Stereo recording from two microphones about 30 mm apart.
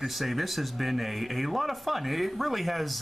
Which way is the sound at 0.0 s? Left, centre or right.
Centre.